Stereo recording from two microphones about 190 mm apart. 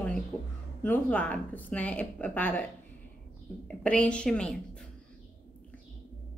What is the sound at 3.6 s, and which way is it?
Speech, 5° left (ahead or behind).